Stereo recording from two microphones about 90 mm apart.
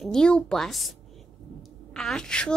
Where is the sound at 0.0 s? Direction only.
5° left (ahead or behind).